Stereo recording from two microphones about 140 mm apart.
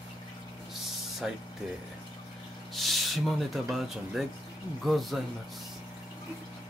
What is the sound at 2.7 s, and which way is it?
Speech, centre (ahead or behind).